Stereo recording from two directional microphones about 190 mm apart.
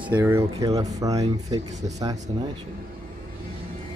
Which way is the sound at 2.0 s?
20° right (ahead or behind).